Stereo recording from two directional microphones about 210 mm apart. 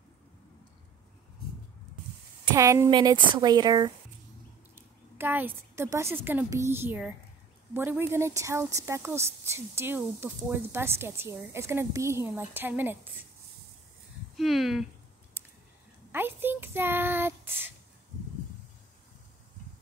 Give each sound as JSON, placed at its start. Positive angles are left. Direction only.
{"t": 2.5, "sound": "a woman's voice", "side_deg": -15}
{"t": 14.3, "sound": "speech", "side_deg": 0}
{"t": 16.1, "sound": "speech", "side_deg": -10}